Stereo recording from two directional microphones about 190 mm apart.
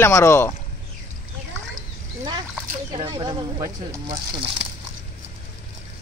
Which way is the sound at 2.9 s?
20° right (ahead or behind).